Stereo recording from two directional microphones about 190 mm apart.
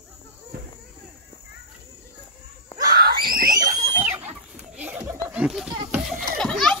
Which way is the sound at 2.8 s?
50° right (ahead or behind).